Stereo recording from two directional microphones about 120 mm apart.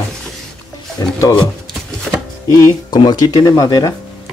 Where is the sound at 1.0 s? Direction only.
25° left (ahead or behind).